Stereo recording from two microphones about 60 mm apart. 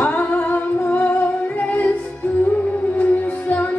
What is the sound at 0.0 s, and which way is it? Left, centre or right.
Humming, left.